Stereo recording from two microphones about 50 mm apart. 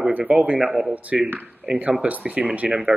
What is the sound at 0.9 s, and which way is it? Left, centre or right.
Speech, right.